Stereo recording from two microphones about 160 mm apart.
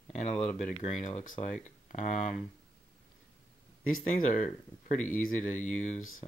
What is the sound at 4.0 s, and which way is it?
Speech, 40° left (ahead or behind).